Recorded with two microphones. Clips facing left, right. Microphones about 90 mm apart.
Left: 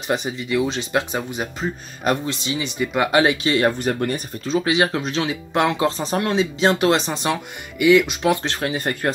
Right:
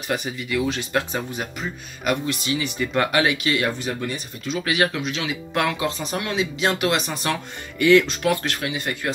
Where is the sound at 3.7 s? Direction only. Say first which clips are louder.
Left 5 dB; 45° left (ahead or behind); by 4.9 s 25° left (ahead or behind).